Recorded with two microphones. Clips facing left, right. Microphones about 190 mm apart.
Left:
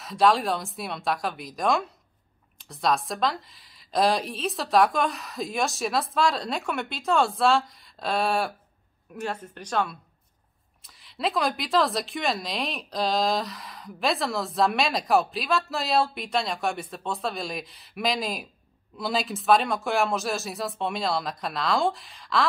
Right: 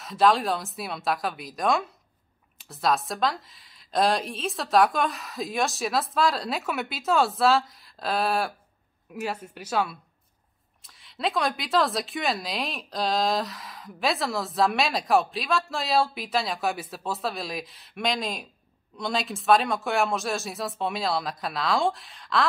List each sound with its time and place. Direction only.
0.0 s a woman's voice: centre (ahead or behind)
11.0 s a woman's voice: centre (ahead or behind)